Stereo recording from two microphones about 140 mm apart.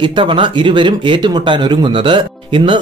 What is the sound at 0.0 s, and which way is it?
Speech, 35° right (ahead or behind).